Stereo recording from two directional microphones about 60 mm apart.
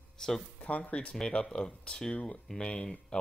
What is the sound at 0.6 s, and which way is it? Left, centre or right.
Speech, left.